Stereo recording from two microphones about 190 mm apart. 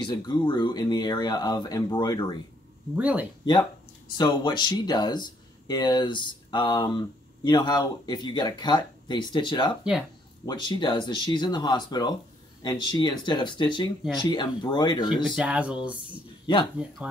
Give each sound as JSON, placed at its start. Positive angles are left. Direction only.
{"t": 0.0, "sound": "speech", "side_deg": 25}
{"t": 3.0, "sound": "speech", "side_deg": -5}
{"t": 4.2, "sound": "speech", "side_deg": 25}
{"t": 15.2, "sound": "speech", "side_deg": -5}